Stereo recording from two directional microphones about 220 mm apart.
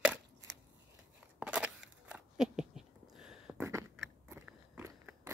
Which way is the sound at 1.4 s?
5° right (ahead or behind).